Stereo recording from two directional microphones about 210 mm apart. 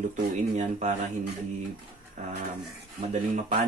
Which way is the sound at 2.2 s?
35° right (ahead or behind).